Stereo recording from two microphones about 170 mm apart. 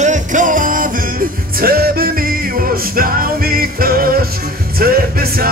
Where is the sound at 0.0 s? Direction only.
45° right (ahead or behind).